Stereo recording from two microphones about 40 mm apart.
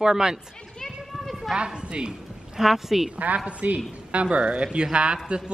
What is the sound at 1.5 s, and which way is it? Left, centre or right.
Speech, right.